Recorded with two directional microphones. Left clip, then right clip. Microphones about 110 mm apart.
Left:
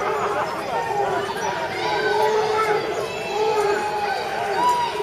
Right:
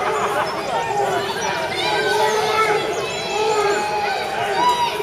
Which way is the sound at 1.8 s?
15° right (ahead or behind).